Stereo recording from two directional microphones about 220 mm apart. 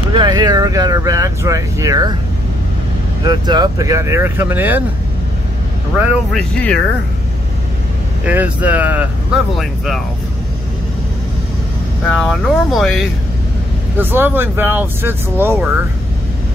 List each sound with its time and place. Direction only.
0.1 s speech: 20° right (ahead or behind)
3.3 s speech: 20° right (ahead or behind)
5.9 s speech: 5° right (ahead or behind)
8.3 s speech: 5° right (ahead or behind)
12.1 s speech: centre (ahead or behind)